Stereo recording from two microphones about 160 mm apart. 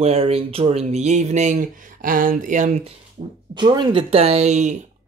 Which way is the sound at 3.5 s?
25° right (ahead or behind).